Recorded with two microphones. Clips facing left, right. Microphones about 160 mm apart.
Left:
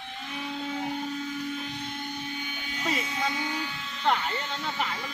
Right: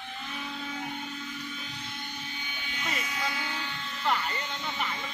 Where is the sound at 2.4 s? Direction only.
40° left (ahead or behind); by 3.9 s 10° left (ahead or behind).